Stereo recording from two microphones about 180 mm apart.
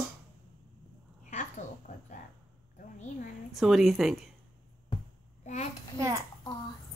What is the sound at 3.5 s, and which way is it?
Speech, centre (ahead or behind).